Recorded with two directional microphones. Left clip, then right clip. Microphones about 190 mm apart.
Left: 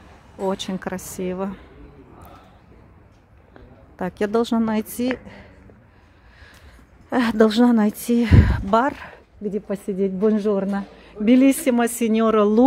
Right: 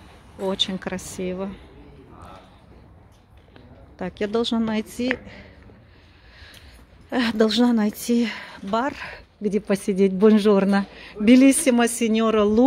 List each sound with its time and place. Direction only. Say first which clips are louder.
0.4 s a woman's voice: right 1 dB; 10° left (ahead or behind)
4.0 s a woman's voice: left 3 dB; 15° left (ahead or behind)
7.1 s a woman's voice: left 3 dB; 10° left (ahead or behind)
8.4 s a woman's voice: left 6 dB; 20° left (ahead or behind)
9.1 s speech: right 3 dB; 20° right (ahead or behind); by 12.6 s 10° left (ahead or behind)